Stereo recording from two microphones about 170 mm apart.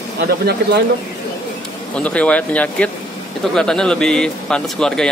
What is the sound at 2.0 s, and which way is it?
A man's voice, 5° left (ahead or behind).